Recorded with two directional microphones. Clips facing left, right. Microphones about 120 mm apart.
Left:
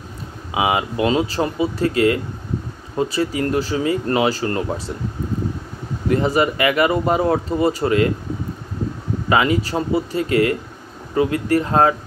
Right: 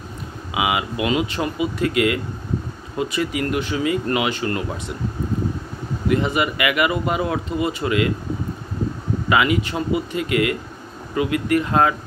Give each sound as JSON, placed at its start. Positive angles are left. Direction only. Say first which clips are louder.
{"t": 0.6, "sound": "speech", "louder": "left 3 dB", "side_deg": 35}
{"t": 6.0, "sound": "speech", "louder": "left 3 dB", "side_deg": 35}
{"t": 9.3, "sound": "speech", "louder": "left 2 dB", "side_deg": 35}